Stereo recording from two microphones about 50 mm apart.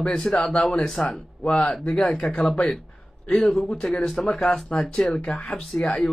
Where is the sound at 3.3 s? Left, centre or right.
Centre.